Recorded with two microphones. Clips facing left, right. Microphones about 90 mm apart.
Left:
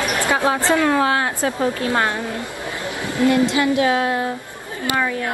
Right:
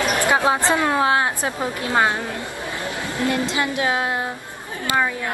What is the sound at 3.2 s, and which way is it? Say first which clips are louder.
Speech: left 7 dB; 20° left (ahead or behind).